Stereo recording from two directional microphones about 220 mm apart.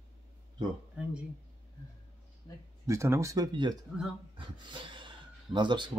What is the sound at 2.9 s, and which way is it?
A man's voice, 15° right (ahead or behind).